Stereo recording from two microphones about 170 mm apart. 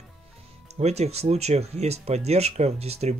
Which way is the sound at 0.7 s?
40° right (ahead or behind).